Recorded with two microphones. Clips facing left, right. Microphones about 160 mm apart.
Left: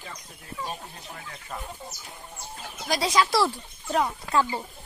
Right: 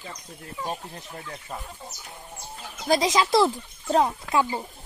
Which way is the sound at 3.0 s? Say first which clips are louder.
Even; 20° right (ahead or behind).